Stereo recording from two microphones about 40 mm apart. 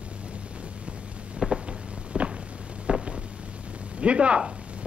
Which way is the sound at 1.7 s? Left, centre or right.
Right.